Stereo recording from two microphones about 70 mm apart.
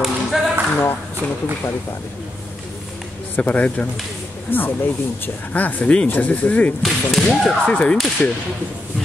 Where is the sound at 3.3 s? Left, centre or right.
Left.